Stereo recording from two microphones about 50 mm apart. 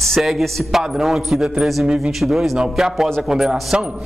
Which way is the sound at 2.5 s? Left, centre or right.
Centre.